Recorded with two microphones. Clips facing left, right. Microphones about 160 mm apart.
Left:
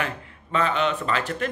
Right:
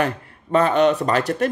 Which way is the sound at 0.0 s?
45° right (ahead or behind).